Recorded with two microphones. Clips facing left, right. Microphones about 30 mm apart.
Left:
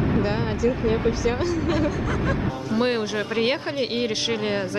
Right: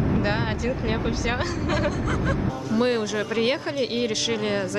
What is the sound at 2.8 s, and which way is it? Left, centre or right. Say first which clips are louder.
Speech: even; centre.